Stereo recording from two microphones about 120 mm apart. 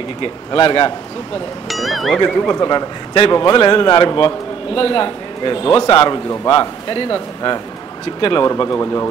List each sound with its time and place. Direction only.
0.2 s a man's voice: 45° left (ahead or behind)
1.7 s speech: centre (ahead or behind)
2.1 s a man's voice: 25° left (ahead or behind)
8.2 s speech: 45° left (ahead or behind)
8.7 s speech: 25° left (ahead or behind)